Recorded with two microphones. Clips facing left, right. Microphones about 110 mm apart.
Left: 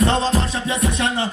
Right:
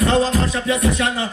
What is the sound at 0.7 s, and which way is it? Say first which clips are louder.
Music: right 3 dB; 30° left (ahead or behind).